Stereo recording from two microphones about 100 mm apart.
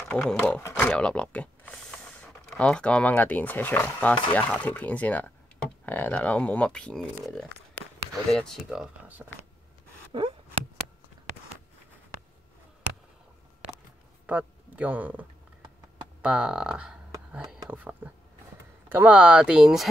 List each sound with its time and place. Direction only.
0.1 s speech: 10° left (ahead or behind)
9.2 s speech: 15° right (ahead or behind)
10.1 s a sound: 60° right (ahead or behind)
14.2 s speech: 15° right (ahead or behind)
17.3 s a sound: 10° right (ahead or behind)
17.6 s speech: 15° right (ahead or behind)